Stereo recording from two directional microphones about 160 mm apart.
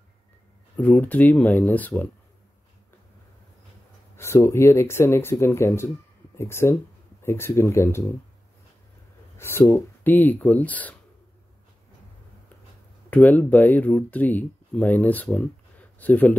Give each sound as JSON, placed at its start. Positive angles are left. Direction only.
{"t": 0.7, "sound": "speech", "side_deg": 10}
{"t": 4.2, "sound": "speech", "side_deg": 15}
{"t": 9.4, "sound": "speech", "side_deg": 15}
{"t": 13.1, "sound": "speech", "side_deg": 10}